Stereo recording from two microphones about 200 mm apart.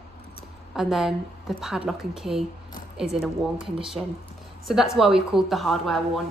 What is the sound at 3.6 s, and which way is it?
Speech, 25° right (ahead or behind).